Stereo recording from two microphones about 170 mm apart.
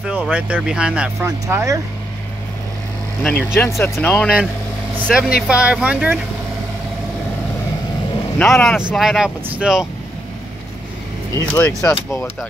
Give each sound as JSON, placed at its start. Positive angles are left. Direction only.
{"t": 0.0, "sound": "speech", "side_deg": -5}
{"t": 1.2, "sound": "speech", "side_deg": -15}
{"t": 3.2, "sound": "speech", "side_deg": 5}
{"t": 5.0, "sound": "speech", "side_deg": -5}
{"t": 8.4, "sound": "speech", "side_deg": 0}
{"t": 11.4, "sound": "speech", "side_deg": 5}